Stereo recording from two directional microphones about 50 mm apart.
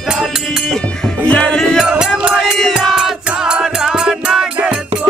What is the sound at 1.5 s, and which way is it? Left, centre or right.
Music, centre.